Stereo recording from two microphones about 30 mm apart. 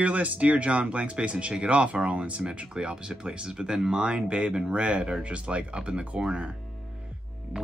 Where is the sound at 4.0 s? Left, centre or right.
Right.